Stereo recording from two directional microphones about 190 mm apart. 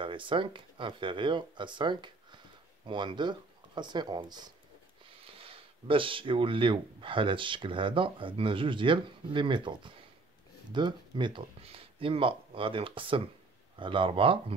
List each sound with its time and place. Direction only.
0.0 s speech: 25° right (ahead or behind)